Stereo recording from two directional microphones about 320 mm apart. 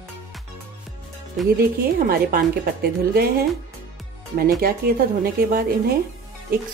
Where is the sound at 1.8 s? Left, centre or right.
Right.